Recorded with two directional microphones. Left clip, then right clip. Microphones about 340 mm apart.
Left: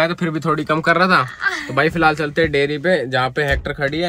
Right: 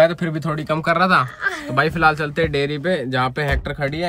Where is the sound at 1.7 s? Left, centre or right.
Centre.